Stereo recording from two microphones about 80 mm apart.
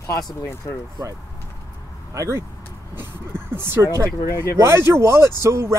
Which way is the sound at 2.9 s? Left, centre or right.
Right.